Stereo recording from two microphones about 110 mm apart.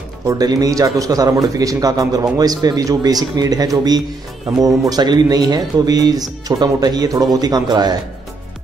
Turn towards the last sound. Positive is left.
turn(degrees=-40)  # may be behind; listen again after turning